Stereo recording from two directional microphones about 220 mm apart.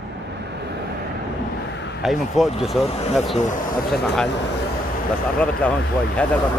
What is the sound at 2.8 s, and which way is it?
Speech, 25° left (ahead or behind).